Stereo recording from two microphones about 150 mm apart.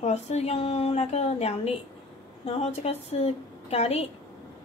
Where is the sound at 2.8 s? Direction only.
40° left (ahead or behind).